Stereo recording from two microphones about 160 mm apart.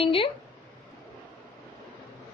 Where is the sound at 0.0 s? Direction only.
35° left (ahead or behind).